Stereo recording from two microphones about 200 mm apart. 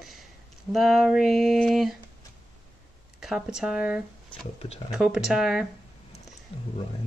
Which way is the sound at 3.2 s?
5° right (ahead or behind).